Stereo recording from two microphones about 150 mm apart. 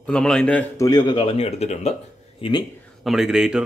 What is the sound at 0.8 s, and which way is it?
Speech, 30° left (ahead or behind).